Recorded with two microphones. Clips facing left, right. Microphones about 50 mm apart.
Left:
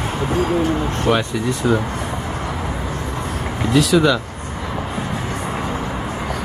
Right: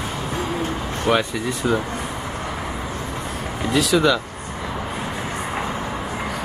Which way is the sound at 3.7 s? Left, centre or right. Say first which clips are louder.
Left 3 dB; centre.